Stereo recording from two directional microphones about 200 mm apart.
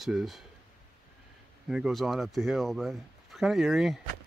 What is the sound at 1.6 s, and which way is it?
Speech, centre (ahead or behind).